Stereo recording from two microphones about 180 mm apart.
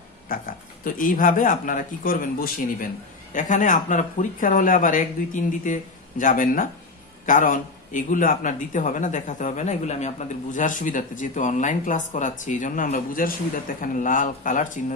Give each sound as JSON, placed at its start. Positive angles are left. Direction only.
{"t": 0.3, "sound": "a man's voice", "side_deg": 50}